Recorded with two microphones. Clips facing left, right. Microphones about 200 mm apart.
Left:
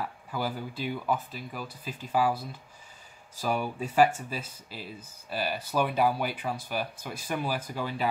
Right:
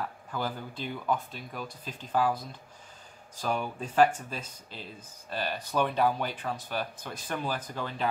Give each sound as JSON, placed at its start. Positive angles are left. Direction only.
{"t": 0.0, "sound": "speech", "side_deg": 10}